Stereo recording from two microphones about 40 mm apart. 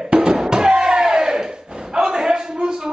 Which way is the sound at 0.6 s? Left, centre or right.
Right.